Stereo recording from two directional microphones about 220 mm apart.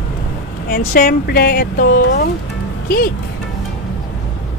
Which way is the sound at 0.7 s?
45° left (ahead or behind).